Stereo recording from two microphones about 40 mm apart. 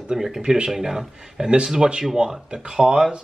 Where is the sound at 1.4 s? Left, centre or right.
Right.